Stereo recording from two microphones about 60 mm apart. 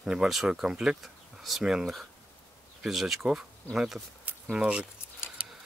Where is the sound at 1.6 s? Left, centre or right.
Centre.